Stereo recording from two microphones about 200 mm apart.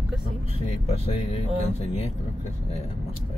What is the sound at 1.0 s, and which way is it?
Speech, 30° left (ahead or behind).